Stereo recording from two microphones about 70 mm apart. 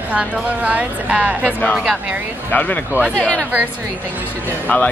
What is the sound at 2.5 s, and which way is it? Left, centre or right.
Speech, left.